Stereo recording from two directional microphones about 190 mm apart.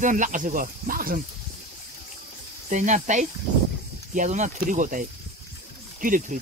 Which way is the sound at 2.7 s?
40° right (ahead or behind).